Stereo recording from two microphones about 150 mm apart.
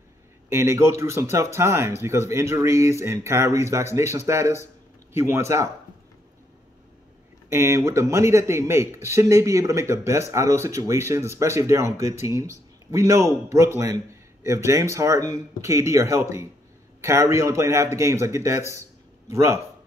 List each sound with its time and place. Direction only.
0.5 s speech: 20° right (ahead or behind)
7.4 s speech: 20° right (ahead or behind)
18.7 s a sound: 20° right (ahead or behind)